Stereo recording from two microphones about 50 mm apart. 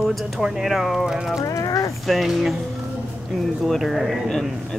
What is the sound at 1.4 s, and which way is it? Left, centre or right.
Clip-clop, left.